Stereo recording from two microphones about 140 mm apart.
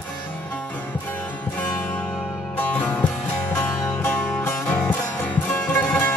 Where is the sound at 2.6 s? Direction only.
15° left (ahead or behind).